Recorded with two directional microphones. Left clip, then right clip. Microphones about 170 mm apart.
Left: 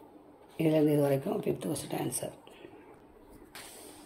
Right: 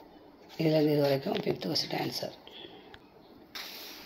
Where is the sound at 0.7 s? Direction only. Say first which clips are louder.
Right 1 dB; 40° left (ahead or behind).